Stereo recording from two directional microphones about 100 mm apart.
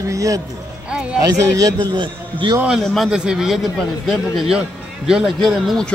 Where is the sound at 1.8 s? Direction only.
50° right (ahead or behind).